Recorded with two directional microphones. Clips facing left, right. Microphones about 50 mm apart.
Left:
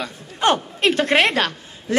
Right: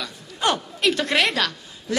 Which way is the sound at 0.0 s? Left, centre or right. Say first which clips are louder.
Left 4 dB; left.